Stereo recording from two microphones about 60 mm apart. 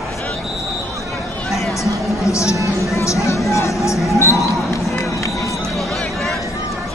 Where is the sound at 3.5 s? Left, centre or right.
Left.